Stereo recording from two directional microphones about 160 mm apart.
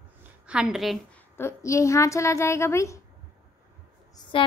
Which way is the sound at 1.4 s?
15° left (ahead or behind).